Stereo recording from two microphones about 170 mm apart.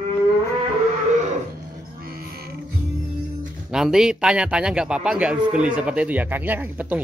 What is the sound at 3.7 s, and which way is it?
A man's voice, 5° right (ahead or behind).